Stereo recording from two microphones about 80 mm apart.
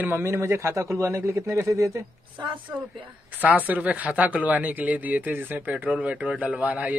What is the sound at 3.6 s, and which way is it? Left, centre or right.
Speech, centre.